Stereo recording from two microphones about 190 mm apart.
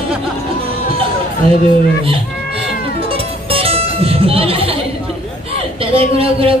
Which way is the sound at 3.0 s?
30° right (ahead or behind).